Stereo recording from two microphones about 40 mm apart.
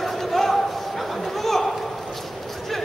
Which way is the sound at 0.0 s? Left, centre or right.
Centre.